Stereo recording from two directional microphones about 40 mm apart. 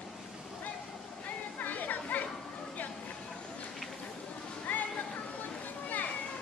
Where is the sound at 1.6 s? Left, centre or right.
Left.